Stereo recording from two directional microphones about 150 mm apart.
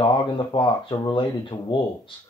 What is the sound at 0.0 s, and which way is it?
Speech, 35° left (ahead or behind).